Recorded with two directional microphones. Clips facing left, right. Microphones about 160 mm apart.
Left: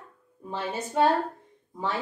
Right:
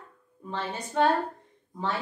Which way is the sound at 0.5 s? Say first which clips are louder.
Left 1 dB; 5° left (ahead or behind).